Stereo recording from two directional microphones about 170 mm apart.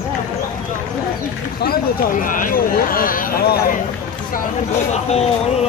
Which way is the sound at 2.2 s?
55° left (ahead or behind).